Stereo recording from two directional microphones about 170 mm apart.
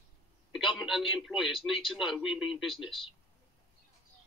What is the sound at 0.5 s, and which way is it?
Speech, centre (ahead or behind).